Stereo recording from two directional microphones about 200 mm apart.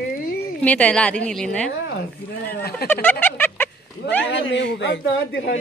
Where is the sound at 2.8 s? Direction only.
50° left (ahead or behind).